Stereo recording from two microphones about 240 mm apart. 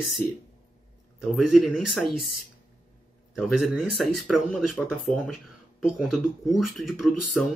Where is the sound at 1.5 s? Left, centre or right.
Centre.